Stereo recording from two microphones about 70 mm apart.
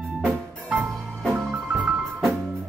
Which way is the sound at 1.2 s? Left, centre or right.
Right.